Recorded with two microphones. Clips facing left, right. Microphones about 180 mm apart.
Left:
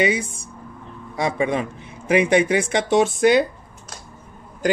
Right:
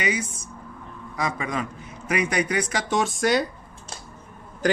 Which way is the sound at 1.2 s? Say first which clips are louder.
Left 6 dB; 30° left (ahead or behind).